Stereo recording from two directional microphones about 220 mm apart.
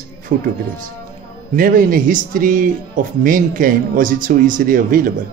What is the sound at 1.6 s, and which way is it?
A man's voice, 40° right (ahead or behind).